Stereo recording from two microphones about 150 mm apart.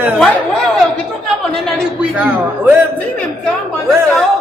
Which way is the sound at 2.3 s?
15° right (ahead or behind).